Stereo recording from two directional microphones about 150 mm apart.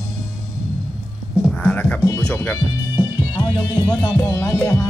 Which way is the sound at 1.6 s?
10° left (ahead or behind).